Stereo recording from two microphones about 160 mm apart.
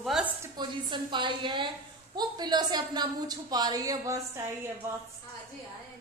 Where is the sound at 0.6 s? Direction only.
30° right (ahead or behind).